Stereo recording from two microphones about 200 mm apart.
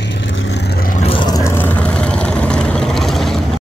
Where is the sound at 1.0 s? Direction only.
25° left (ahead or behind).